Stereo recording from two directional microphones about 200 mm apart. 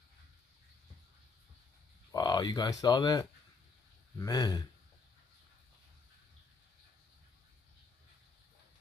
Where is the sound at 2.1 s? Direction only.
20° left (ahead or behind).